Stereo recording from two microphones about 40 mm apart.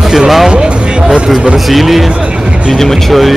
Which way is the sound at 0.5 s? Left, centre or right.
Right.